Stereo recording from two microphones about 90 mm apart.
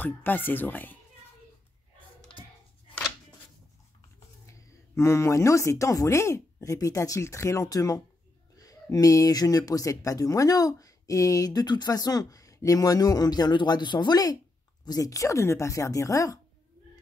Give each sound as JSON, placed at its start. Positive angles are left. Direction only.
{"t": 0.0, "sound": "speech", "side_deg": 20}
{"t": 4.5, "sound": "speech", "side_deg": 30}